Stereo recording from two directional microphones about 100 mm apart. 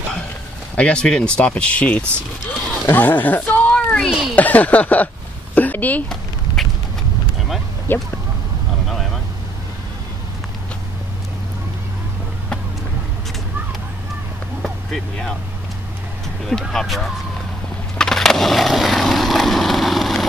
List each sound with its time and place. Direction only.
0.7 s speech: 10° left (ahead or behind)
4.1 s speech: centre (ahead or behind)
4.4 s speech: 15° left (ahead or behind)
6.0 s a sound: centre (ahead or behind)
7.9 s speech: 20° left (ahead or behind)
8.8 s vehicle: centre (ahead or behind)
16.4 s speech: 5° left (ahead or behind)
17.9 s skateboard: 5° left (ahead or behind)